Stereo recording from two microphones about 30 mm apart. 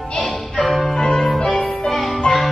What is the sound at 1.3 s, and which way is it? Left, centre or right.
Music, centre.